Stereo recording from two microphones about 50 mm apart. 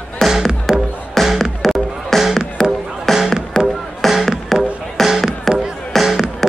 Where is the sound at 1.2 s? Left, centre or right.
Centre.